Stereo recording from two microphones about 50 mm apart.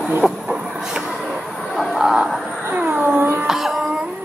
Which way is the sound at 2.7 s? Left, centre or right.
Right.